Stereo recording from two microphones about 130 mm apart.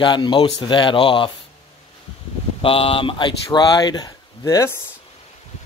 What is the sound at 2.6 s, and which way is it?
Speech, 45° left (ahead or behind).